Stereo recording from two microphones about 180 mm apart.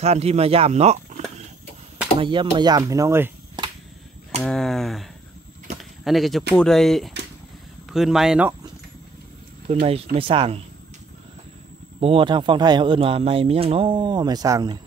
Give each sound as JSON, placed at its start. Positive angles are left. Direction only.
{"t": 0.0, "sound": "speech", "side_deg": -35}
{"t": 4.4, "sound": "speech", "side_deg": 5}
{"t": 5.8, "sound": "a sound", "side_deg": 0}
{"t": 6.5, "sound": "speech", "side_deg": 5}
{"t": 9.7, "sound": "speech", "side_deg": -35}
{"t": 12.0, "sound": "speech", "side_deg": -30}